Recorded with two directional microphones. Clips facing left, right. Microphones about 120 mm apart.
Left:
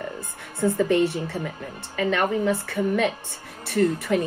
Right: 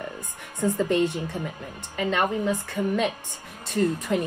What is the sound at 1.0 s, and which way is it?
A woman's voice, 15° right (ahead or behind).